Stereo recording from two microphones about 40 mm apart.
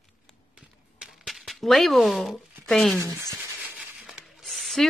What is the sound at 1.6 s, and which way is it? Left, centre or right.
Speech, centre.